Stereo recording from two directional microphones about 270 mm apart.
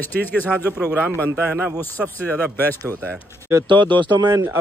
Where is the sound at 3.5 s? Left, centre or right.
Centre.